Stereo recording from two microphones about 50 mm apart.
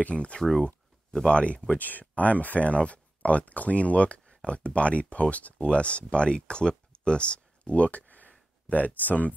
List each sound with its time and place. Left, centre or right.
0.0 s speech: left
0.4 s speech: centre
1.1 s speech: left
1.8 s speech: left
8.3 s a sound: left